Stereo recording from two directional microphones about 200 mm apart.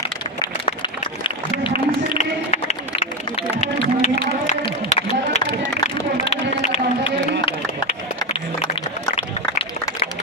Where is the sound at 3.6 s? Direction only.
35° left (ahead or behind).